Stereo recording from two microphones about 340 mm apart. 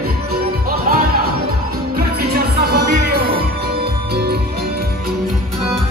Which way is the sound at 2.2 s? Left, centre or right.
Right.